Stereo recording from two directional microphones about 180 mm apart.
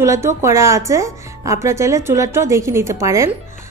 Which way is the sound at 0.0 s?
15° right (ahead or behind).